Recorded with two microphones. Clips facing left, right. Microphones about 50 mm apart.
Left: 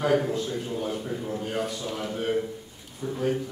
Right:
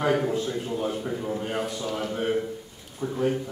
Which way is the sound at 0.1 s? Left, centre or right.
Centre.